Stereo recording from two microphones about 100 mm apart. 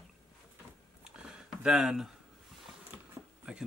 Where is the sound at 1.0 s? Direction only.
10° right (ahead or behind).